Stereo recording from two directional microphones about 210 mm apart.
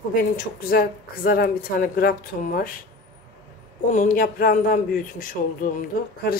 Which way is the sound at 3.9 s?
40° left (ahead or behind).